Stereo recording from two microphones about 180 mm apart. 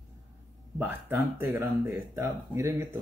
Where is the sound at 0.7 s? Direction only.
10° right (ahead or behind).